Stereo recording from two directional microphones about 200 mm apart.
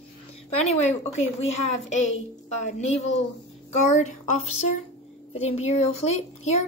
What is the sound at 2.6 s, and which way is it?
A woman's voice, 35° left (ahead or behind).